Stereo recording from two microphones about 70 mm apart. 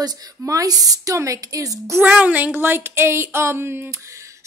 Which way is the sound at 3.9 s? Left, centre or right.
Right.